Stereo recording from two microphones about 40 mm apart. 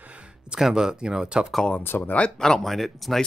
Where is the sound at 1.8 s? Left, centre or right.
Left.